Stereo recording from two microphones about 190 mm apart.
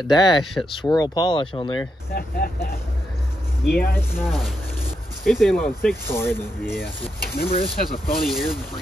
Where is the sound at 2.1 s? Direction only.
50° left (ahead or behind).